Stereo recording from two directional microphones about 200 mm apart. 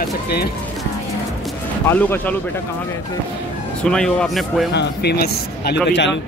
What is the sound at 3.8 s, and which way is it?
Speech, 5° left (ahead or behind).